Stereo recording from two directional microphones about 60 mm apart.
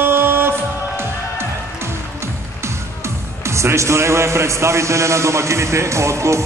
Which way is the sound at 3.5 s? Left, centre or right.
Right.